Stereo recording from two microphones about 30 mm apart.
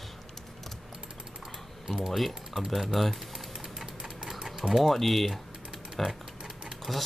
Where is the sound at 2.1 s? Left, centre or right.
Centre.